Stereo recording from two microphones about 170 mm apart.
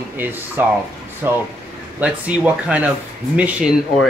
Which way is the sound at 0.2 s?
10° right (ahead or behind).